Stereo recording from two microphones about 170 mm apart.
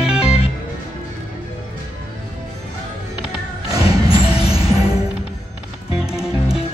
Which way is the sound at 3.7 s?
25° right (ahead or behind).